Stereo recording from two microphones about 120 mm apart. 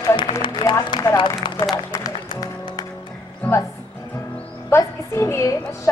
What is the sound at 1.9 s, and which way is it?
Music, 30° left (ahead or behind).